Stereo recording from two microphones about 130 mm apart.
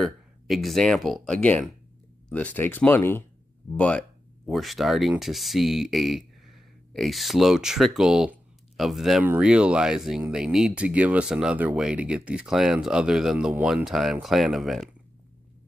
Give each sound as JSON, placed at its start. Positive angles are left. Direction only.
{"t": 0.0, "sound": "speech", "side_deg": 0}